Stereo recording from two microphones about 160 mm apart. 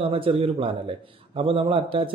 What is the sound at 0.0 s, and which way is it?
A man's voice, 35° right (ahead or behind).